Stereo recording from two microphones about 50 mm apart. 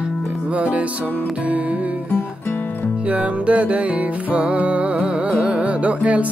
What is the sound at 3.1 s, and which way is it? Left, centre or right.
Music, right.